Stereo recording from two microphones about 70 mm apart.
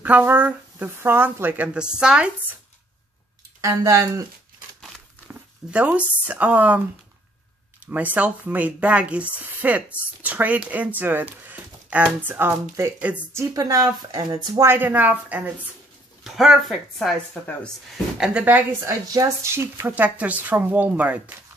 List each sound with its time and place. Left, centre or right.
0.0 s a woman's voice: right
3.6 s speech: right
5.3 s speech: centre
7.8 s a woman's voice: right
13.5 s speech: right
14.8 s a woman's voice: right
16.3 s speech: centre
18.1 s a woman's voice: centre
18.4 s a woman's voice: right
18.9 s speech: right
19.5 s speech: right
19.9 s a woman's voice: right